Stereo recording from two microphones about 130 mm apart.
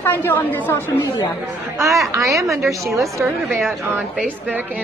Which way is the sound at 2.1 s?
25° right (ahead or behind).